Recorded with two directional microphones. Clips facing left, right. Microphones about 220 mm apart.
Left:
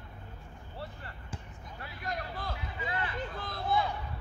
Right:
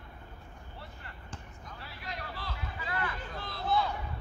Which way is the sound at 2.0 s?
50° left (ahead or behind).